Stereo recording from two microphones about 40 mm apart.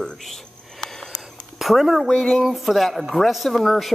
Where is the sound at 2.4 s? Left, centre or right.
Centre.